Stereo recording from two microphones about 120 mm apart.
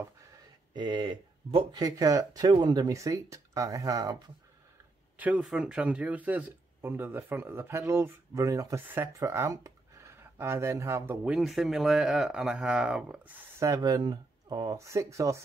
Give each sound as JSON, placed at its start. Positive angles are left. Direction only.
{"t": 0.7, "sound": "speech", "side_deg": -40}
{"t": 1.8, "sound": "speech", "side_deg": -30}
{"t": 5.2, "sound": "speech", "side_deg": -10}
{"t": 11.2, "sound": "speech", "side_deg": -5}
{"t": 13.6, "sound": "speech", "side_deg": -30}